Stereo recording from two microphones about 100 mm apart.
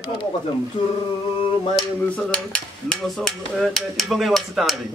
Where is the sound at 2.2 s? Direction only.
10° left (ahead or behind).